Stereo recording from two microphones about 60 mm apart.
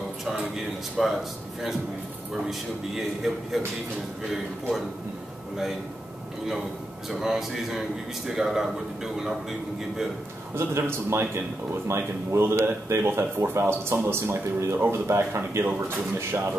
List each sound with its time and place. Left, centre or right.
1.0 s speech: centre
3.6 s speech: centre
7.1 s a man's voice: centre
10.5 s speech: right